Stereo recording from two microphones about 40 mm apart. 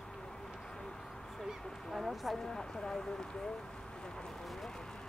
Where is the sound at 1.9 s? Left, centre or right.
Centre.